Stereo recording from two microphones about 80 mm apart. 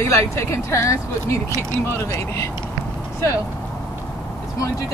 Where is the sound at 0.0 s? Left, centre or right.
Left.